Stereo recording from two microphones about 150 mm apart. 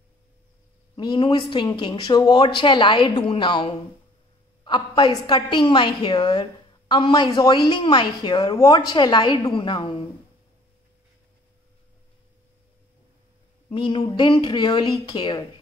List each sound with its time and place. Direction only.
0.9 s a woman's voice: 30° left (ahead or behind)
13.7 s a woman's voice: 35° left (ahead or behind)